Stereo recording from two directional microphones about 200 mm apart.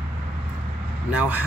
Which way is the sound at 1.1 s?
5° right (ahead or behind).